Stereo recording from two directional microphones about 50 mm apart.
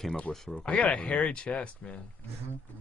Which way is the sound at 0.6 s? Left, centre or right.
Left.